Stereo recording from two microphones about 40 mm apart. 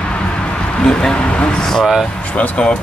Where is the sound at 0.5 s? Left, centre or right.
Left.